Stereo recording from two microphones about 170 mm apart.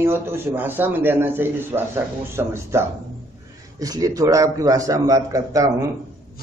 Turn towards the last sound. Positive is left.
turn(degrees=-20)  # may be behind; listen again after turning